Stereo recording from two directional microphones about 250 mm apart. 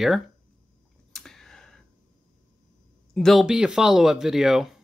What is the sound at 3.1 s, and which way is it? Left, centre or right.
Speech, centre.